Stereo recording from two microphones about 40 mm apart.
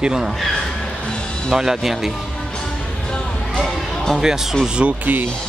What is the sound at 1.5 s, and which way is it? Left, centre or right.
Speech, centre.